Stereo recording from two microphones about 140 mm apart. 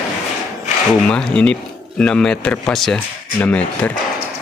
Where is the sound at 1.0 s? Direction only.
5° left (ahead or behind).